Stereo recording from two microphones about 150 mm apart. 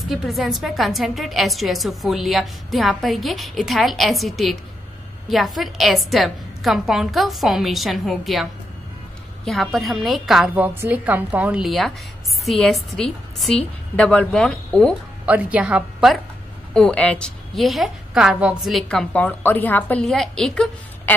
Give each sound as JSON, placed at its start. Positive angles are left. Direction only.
{"t": 0.1, "sound": "a woman's voice", "side_deg": 0}
{"t": 15.2, "sound": "a woman's voice", "side_deg": -10}
{"t": 16.7, "sound": "a woman's voice", "side_deg": 5}